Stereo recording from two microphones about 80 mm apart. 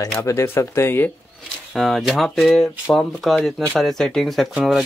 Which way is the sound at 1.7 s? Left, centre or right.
Centre.